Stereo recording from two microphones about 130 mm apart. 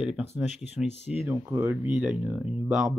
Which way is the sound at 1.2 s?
20° right (ahead or behind).